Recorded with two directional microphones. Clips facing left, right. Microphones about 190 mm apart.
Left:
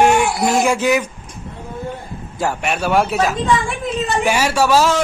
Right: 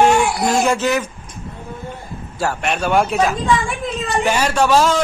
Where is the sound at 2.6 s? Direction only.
5° left (ahead or behind).